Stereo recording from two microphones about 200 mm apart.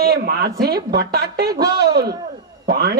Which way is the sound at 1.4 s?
20° right (ahead or behind).